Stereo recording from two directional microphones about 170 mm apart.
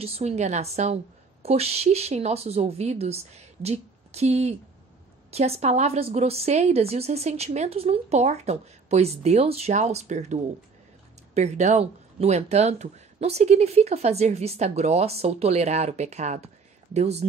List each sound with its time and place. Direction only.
0.0 s a woman's voice: 40° right (ahead or behind)